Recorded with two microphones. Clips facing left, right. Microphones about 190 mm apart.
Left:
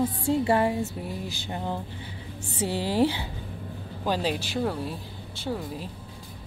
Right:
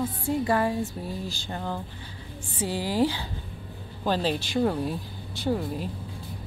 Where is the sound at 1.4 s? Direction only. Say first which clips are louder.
Left 1 dB; 20° left (ahead or behind).